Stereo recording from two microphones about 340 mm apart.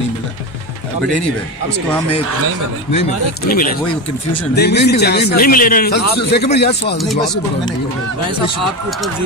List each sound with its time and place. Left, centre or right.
2.9 s a man's voice: left